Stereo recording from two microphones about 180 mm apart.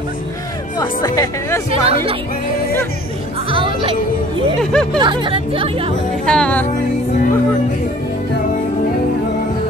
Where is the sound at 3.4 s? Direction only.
30° right (ahead or behind).